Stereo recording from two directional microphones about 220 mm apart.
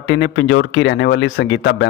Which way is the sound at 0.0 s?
55° left (ahead or behind).